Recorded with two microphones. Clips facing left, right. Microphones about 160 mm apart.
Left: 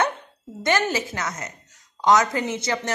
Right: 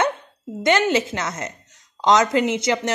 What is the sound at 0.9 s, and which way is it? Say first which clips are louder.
Speech: right 5 dB; 20° right (ahead or behind).